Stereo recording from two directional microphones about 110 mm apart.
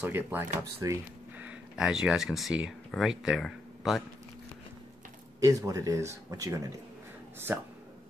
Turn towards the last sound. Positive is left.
turn(degrees=-20)  # may be behind; listen again after turning